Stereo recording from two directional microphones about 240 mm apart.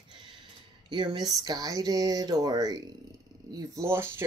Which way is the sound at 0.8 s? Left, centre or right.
Centre.